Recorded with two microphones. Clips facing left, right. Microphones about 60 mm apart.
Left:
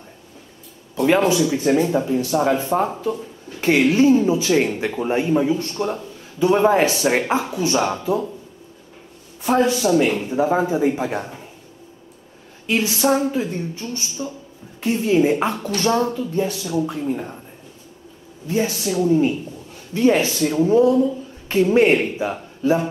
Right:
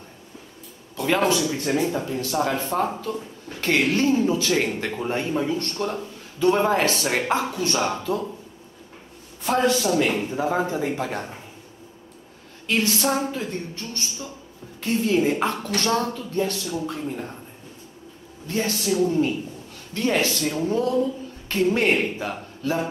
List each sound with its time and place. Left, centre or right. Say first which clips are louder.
0.9 s speech: left 6 dB; centre
1.2 s speech: left 4 dB; centre
9.4 s speech: left 3 dB; centre
12.6 s speech: left 4 dB; centre
18.5 s speech: left 3 dB; centre